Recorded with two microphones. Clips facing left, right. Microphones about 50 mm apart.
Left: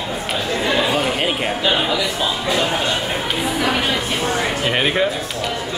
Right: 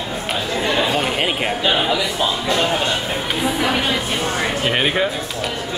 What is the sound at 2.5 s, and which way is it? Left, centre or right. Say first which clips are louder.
Speech: even; centre.